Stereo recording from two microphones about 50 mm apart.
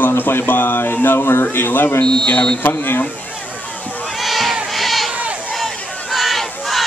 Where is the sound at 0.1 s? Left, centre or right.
Left.